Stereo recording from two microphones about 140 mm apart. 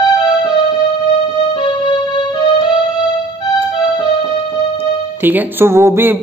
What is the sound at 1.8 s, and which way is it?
Music, 35° left (ahead or behind).